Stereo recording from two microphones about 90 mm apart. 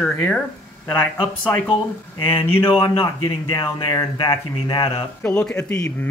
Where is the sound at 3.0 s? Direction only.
75° left (ahead or behind).